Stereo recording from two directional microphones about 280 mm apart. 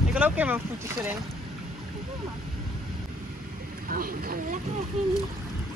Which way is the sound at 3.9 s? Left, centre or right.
Right.